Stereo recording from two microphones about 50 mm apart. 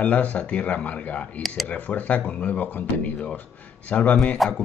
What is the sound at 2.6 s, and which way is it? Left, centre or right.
Speech, left.